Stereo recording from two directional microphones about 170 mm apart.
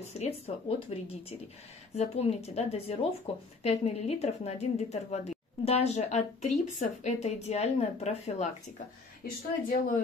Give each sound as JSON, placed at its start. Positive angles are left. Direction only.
{"t": 0.1, "sound": "speech", "side_deg": 35}
{"t": 9.2, "sound": "speech", "side_deg": 55}